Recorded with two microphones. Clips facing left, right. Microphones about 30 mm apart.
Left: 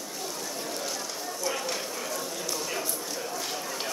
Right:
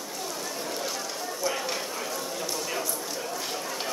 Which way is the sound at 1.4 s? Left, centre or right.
Centre.